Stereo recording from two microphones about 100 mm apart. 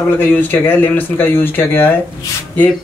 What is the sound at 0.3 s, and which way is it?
Speech, 20° left (ahead or behind).